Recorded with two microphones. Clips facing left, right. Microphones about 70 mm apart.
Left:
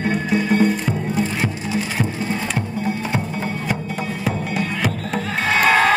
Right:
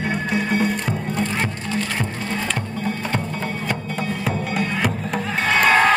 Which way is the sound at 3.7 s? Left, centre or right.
Centre.